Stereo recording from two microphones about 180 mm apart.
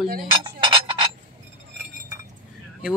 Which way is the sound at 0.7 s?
30° right (ahead or behind).